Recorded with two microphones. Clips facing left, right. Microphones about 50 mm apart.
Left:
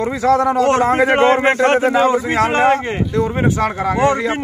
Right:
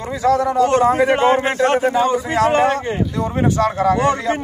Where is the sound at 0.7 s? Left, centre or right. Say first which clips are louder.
Right 1 dB; left.